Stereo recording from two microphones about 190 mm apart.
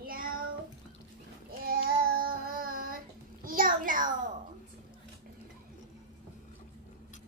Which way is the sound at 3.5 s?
45° right (ahead or behind).